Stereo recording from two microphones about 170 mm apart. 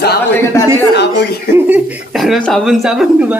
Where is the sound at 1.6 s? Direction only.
10° right (ahead or behind).